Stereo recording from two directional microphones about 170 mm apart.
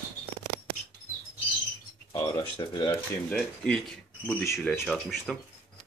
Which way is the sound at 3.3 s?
5° left (ahead or behind).